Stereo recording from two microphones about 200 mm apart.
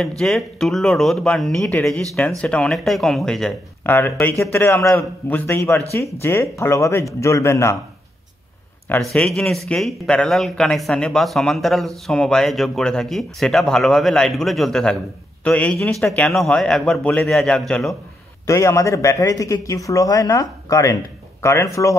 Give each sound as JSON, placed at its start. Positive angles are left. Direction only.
{"t": 0.2, "sound": "speech", "side_deg": 5}
{"t": 9.1, "sound": "speech", "side_deg": 5}
{"t": 18.5, "sound": "speech", "side_deg": 15}